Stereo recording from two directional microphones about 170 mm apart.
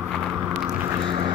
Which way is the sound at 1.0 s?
30° right (ahead or behind).